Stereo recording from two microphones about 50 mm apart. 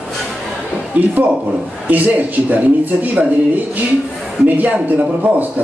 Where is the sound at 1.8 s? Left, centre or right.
Right.